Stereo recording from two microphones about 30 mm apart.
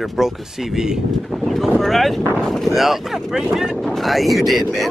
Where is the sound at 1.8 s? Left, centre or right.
Centre.